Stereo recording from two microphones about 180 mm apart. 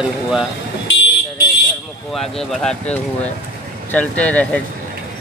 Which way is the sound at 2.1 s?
Centre (ahead or behind).